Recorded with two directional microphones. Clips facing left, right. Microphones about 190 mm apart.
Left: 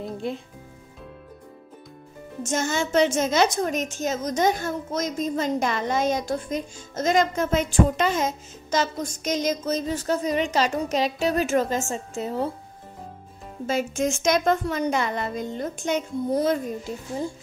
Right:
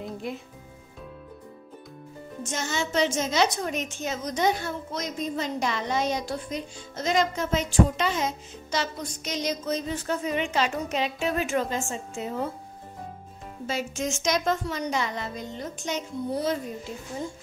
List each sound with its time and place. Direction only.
0.2 s speech: 30° left (ahead or behind)
2.4 s a woman's voice: 50° left (ahead or behind)
13.7 s a woman's voice: 50° left (ahead or behind)